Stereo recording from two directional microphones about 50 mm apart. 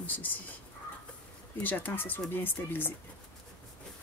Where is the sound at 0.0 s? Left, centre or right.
Left.